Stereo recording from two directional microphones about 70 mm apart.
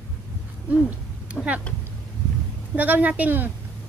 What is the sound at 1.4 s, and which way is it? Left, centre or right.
Speech, centre.